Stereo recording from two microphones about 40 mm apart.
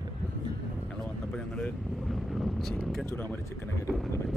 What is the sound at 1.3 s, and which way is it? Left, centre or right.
Speech, left.